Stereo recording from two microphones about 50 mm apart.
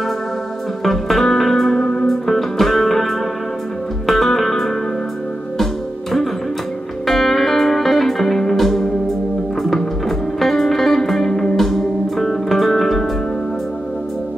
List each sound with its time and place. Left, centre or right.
0.8 s music: centre
7.1 s music: centre